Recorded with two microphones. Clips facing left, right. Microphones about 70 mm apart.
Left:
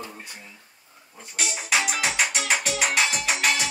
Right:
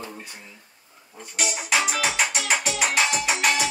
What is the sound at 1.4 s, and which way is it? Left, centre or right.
Music, centre.